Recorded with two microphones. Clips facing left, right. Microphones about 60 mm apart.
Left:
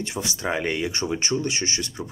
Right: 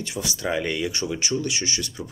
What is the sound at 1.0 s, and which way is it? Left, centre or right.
Speech, left.